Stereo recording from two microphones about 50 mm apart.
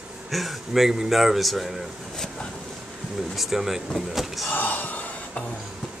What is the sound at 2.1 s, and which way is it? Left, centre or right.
Speech, centre.